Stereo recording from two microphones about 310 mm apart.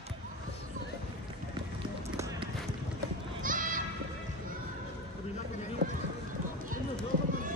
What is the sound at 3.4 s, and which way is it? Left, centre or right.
Sheep, right.